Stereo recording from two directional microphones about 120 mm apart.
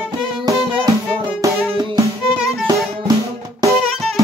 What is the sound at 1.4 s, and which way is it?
Music, 35° right (ahead or behind).